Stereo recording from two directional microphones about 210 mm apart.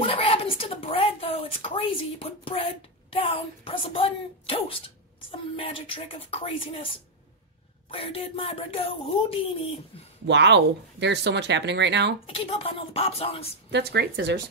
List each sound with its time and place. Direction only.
0.0 s a woman's voice: 25° left (ahead or behind)
10.2 s speech: 55° right (ahead or behind)
12.3 s speech: 25° left (ahead or behind)
13.7 s speech: 50° right (ahead or behind)